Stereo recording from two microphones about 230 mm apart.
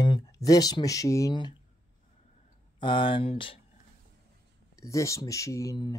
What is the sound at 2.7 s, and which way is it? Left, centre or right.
Speech, left.